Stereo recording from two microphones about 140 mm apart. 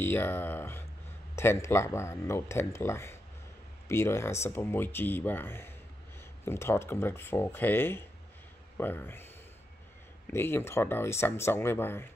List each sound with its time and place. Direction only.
0.0 s speech: 15° left (ahead or behind)
10.3 s speech: 15° left (ahead or behind)